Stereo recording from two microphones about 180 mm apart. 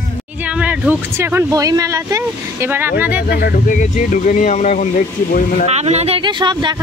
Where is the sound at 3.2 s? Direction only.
55° left (ahead or behind).